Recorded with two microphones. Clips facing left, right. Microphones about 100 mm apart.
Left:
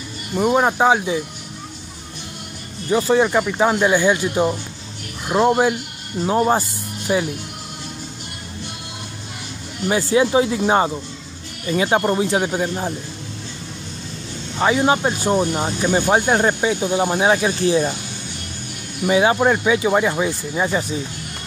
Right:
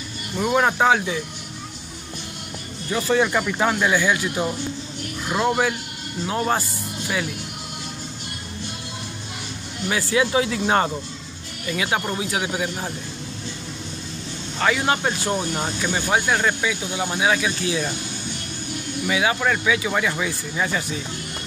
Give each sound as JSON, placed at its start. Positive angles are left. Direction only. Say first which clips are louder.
{"t": 0.6, "sound": "speech", "louder": "even", "side_deg": 20}
{"t": 2.9, "sound": "speech", "louder": "left 4 dB", "side_deg": 20}
{"t": 7.1, "sound": "speech", "louder": "left 7 dB", "side_deg": 25}
{"t": 9.8, "sound": "speech", "louder": "left 5 dB", "side_deg": 25}
{"t": 11.7, "sound": "speech", "louder": "left 7 dB", "side_deg": 35}
{"t": 14.6, "sound": "speech", "louder": "left 4 dB", "side_deg": 20}
{"t": 15.9, "sound": "speech", "louder": "left 5 dB", "side_deg": 35}
{"t": 19.0, "sound": "speech", "louder": "left 6 dB", "side_deg": 35}